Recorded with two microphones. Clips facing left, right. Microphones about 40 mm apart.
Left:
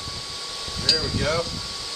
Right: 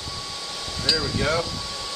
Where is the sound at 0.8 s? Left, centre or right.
Centre.